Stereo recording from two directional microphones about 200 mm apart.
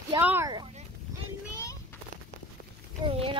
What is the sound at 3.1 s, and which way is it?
Speech, 30° right (ahead or behind).